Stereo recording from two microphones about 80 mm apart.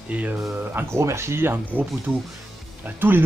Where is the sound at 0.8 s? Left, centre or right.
Right.